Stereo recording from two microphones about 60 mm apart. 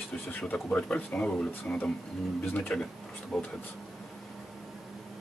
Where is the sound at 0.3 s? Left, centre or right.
Left.